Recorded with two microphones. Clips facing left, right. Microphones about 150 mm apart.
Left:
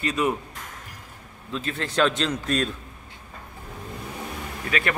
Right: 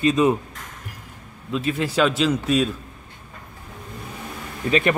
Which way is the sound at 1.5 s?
10° right (ahead or behind).